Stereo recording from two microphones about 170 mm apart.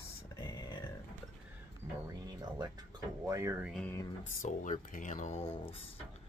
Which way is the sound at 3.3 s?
15° right (ahead or behind).